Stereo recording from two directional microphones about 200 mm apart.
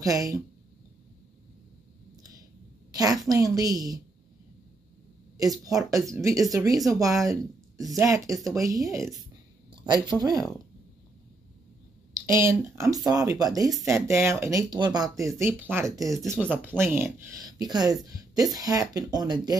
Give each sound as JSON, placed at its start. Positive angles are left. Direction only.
{"t": 0.0, "sound": "speech", "side_deg": -15}
{"t": 2.9, "sound": "a sound", "side_deg": -20}
{"t": 3.3, "sound": "speech", "side_deg": -20}
{"t": 5.4, "sound": "speech", "side_deg": -15}
{"t": 9.7, "sound": "a sound", "side_deg": -20}
{"t": 10.2, "sound": "speech", "side_deg": -20}
{"t": 12.1, "sound": "speech", "side_deg": -15}